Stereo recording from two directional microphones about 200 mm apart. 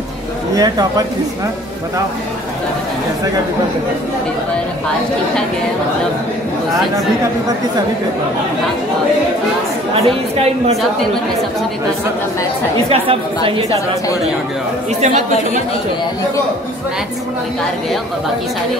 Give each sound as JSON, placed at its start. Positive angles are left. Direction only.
{"t": 0.6, "sound": "a woman's voice", "side_deg": -20}
{"t": 9.9, "sound": "a woman's voice", "side_deg": -30}
{"t": 12.9, "sound": "a woman's voice", "side_deg": -25}